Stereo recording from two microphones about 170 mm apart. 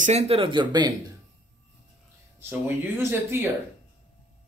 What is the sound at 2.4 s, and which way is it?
Speech, 15° right (ahead or behind).